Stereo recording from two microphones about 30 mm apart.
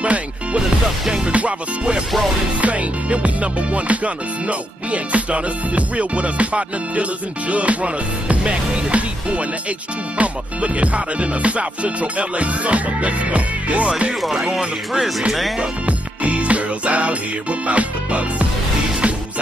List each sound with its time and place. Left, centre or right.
0.0 s music: right
1.0 s music: centre
1.3 s music: right
14.9 s speech: centre
16.2 s music: right